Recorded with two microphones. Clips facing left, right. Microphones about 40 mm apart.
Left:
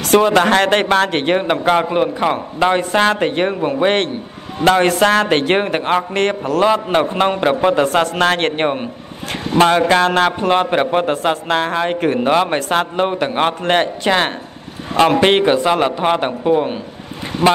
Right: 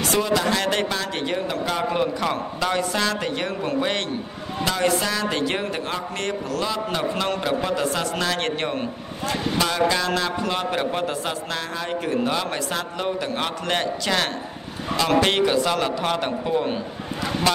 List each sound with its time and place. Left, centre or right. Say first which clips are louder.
0.0 s speech: left 9 dB; left
1.9 s a man's voice: left 6 dB; left